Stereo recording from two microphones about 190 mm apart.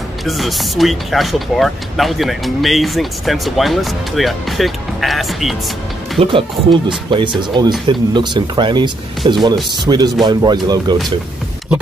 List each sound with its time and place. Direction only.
0.2 s speech: centre (ahead or behind)
6.1 s speech: 30° right (ahead or behind)